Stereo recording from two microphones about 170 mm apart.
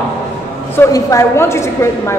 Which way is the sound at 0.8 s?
20° left (ahead or behind).